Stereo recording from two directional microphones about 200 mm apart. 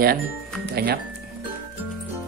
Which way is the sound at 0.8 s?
50° right (ahead or behind).